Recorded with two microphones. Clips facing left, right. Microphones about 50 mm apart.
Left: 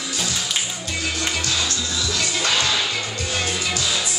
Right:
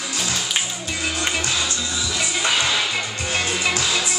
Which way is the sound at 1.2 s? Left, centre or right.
Right.